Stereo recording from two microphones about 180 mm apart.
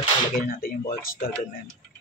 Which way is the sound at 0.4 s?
55° left (ahead or behind).